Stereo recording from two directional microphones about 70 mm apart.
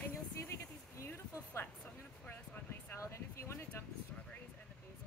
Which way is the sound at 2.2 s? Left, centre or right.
Left.